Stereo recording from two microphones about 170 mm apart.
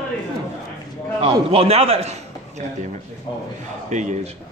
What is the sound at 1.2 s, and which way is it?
A man's voice, 35° right (ahead or behind).